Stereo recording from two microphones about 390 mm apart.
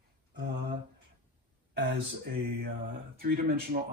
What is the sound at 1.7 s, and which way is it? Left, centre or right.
Speech, right.